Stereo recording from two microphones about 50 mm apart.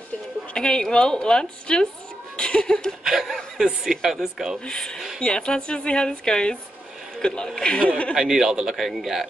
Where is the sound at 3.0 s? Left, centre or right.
Centre.